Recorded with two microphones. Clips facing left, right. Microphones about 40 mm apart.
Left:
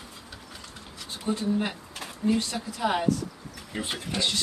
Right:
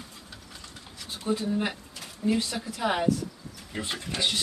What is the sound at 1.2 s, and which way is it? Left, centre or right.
Speech, centre.